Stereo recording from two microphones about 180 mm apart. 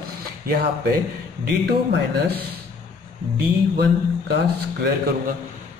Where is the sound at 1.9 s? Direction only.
60° right (ahead or behind).